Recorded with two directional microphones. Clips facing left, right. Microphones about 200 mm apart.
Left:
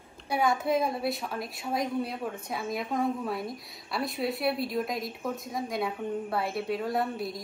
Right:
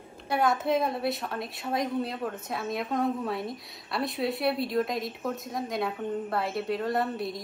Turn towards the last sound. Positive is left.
turn(degrees=0)  # may be behind; listen again after turning